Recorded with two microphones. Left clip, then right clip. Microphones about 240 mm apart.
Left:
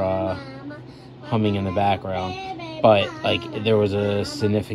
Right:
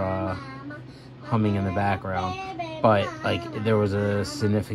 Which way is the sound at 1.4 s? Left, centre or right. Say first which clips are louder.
Left 3 dB; centre.